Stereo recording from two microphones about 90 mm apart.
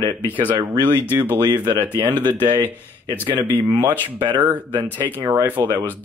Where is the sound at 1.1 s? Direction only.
20° right (ahead or behind).